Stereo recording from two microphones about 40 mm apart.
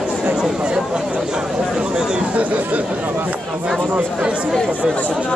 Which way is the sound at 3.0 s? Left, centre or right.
Right.